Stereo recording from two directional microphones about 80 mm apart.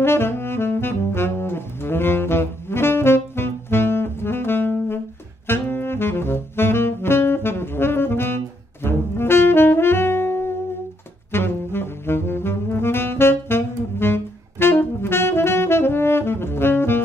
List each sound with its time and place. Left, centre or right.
0.0 s saxophone: left